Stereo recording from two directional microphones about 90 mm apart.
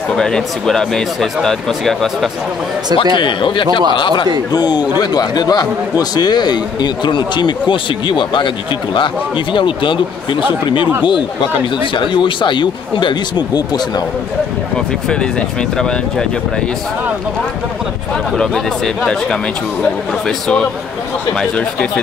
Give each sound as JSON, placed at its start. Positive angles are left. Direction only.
{"t": 0.1, "sound": "speech", "side_deg": 5}
{"t": 3.2, "sound": "a man's voice", "side_deg": 60}
{"t": 4.5, "sound": "a man's voice", "side_deg": 50}
{"t": 11.8, "sound": "a man's voice", "side_deg": 65}
{"t": 19.8, "sound": "speech", "side_deg": 10}